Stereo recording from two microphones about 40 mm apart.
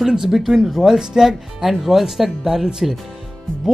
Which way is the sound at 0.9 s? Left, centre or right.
Centre.